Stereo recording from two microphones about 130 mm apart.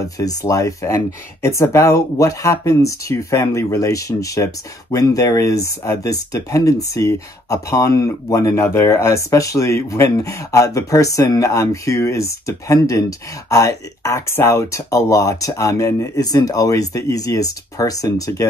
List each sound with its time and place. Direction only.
0.2 s speech: 25° left (ahead or behind)